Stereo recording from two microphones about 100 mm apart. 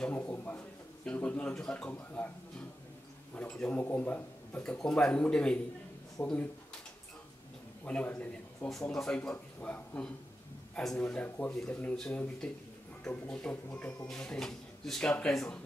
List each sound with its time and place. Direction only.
0.0 s speech: 15° left (ahead or behind)
3.3 s speech: 10° left (ahead or behind)
6.2 s speech: 20° left (ahead or behind)
7.8 s a man's voice: 15° left (ahead or behind)